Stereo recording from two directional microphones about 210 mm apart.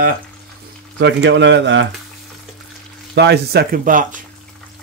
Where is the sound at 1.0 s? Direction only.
55° right (ahead or behind).